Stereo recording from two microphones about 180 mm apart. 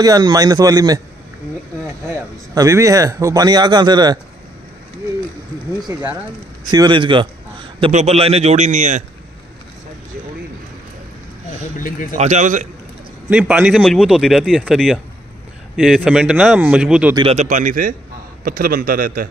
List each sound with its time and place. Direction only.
0.0 s speech: 20° right (ahead or behind)
5.9 s a man's voice: 15° right (ahead or behind)
7.9 s a man's voice: 35° right (ahead or behind)
11.8 s speech: 50° left (ahead or behind)
12.2 s a man's voice: 40° right (ahead or behind)
13.3 s speech: 5° right (ahead or behind)
17.1 s a man's voice: 30° right (ahead or behind); by 19.2 s 50° right (ahead or behind)